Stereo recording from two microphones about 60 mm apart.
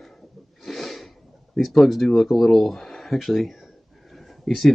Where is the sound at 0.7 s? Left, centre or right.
Centre.